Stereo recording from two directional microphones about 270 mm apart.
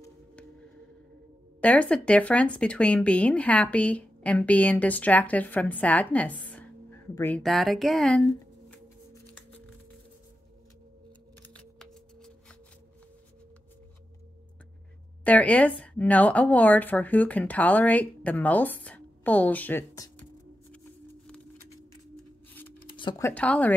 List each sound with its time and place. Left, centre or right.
1.6 s speech: centre
11.4 s shuffling cards: centre
15.2 s speech: centre
22.1 s a sound: centre
22.9 s speech: centre